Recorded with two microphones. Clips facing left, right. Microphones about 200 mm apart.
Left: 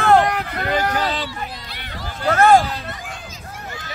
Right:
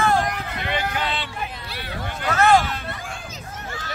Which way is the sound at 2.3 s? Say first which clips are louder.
Left 4 dB; 50° left (ahead or behind).